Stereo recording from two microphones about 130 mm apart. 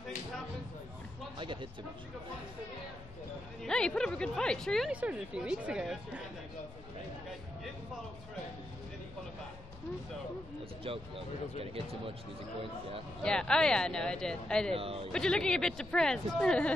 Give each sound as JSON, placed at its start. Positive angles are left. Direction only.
{"t": 1.4, "sound": "speech", "side_deg": -40}
{"t": 3.6, "sound": "speech", "side_deg": 5}
{"t": 5.0, "sound": "speech", "side_deg": -5}
{"t": 10.8, "sound": "speech", "side_deg": -45}
{"t": 13.2, "sound": "speech", "side_deg": 5}
{"t": 14.7, "sound": "speech", "side_deg": -45}
{"t": 15.1, "sound": "speech", "side_deg": 5}